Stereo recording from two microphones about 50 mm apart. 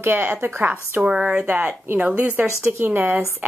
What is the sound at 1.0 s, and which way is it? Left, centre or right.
Speech, centre.